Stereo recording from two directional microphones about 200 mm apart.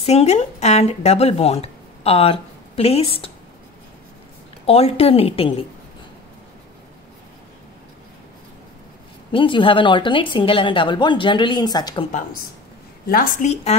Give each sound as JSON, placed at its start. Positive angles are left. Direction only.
{"t": 0.0, "sound": "a woman's voice", "side_deg": 30}
{"t": 4.6, "sound": "a woman's voice", "side_deg": 30}
{"t": 9.3, "sound": "a woman's voice", "side_deg": 25}
{"t": 12.1, "sound": "a woman's voice", "side_deg": 40}